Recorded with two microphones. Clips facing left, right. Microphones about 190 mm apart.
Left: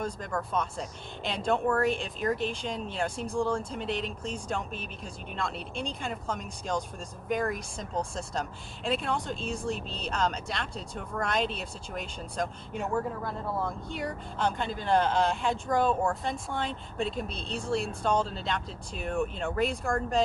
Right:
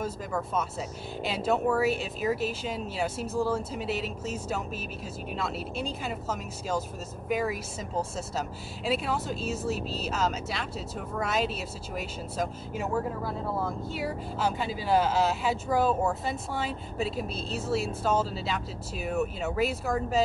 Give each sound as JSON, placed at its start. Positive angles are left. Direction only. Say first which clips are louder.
{"t": 0.0, "sound": "speech", "louder": "right 1 dB", "side_deg": -5}